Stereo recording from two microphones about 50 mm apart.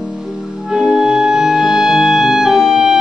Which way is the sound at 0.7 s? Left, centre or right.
Centre.